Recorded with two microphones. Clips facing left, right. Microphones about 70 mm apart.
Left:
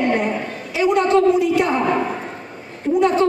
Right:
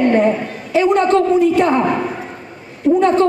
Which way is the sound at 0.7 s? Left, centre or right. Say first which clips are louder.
Right 3 dB; right.